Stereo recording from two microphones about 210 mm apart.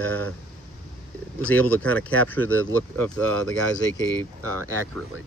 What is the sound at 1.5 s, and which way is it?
Speech, 5° left (ahead or behind).